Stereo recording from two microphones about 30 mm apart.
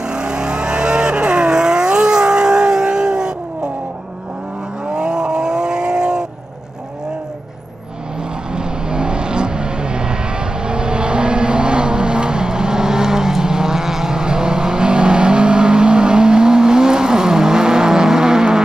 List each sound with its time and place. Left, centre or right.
0.0 s vehicle: right
4.8 s vehicle: right
8.5 s vehicle: right